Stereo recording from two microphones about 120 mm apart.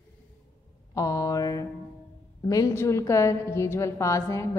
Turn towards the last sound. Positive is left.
turn(degrees=25)  # may be behind; listen again after turning